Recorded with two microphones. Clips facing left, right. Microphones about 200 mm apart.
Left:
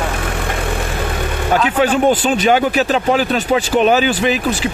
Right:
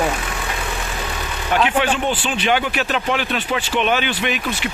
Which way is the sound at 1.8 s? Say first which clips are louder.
Left 7 dB; 45° left (ahead or behind).